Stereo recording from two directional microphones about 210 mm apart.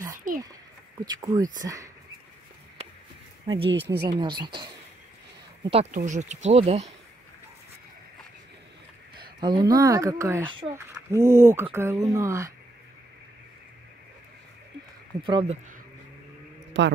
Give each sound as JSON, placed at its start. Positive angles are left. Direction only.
{"t": 0.3, "sound": "a sound", "side_deg": -40}
{"t": 1.0, "sound": "speech", "side_deg": -20}
{"t": 3.5, "sound": "speech", "side_deg": -25}
{"t": 3.8, "sound": "speech", "side_deg": -50}
{"t": 4.1, "sound": "speech", "side_deg": -20}
{"t": 5.6, "sound": "speech", "side_deg": -30}
{"t": 9.2, "sound": "speech", "side_deg": -20}
{"t": 15.2, "sound": "speech", "side_deg": -25}
{"t": 16.8, "sound": "speech", "side_deg": -60}